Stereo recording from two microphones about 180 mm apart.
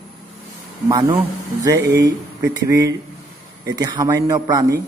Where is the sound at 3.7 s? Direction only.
20° right (ahead or behind).